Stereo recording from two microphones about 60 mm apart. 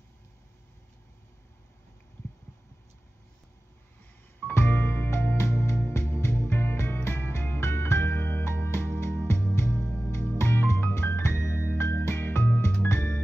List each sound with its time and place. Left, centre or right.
4.6 s music: left